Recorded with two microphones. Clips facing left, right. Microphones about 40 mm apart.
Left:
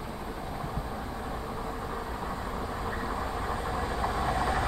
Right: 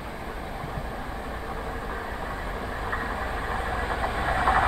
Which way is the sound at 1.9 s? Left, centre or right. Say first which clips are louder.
Right 2 dB; right.